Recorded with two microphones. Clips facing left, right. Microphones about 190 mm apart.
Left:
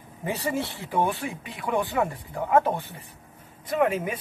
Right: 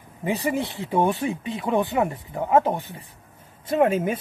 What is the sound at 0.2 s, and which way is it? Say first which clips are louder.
Speech: right 4 dB; 15° right (ahead or behind).